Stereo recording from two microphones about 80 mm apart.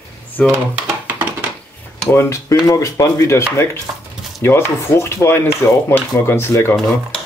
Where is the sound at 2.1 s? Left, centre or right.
Left.